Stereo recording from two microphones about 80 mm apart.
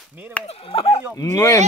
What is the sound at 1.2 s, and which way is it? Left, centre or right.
Speech, left.